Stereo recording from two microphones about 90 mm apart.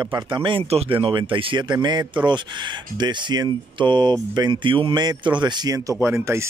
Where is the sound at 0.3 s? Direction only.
70° right (ahead or behind); by 5.9 s 45° right (ahead or behind).